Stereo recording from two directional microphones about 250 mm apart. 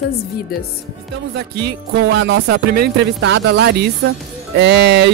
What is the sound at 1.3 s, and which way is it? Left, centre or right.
Speech, right.